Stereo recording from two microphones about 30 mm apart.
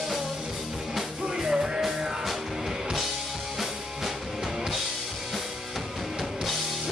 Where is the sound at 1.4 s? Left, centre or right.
Centre.